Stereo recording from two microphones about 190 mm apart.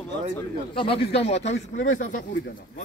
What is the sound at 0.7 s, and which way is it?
Speech, 30° left (ahead or behind).